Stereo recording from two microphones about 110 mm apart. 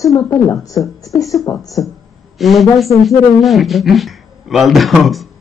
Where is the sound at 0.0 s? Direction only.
30° left (ahead or behind).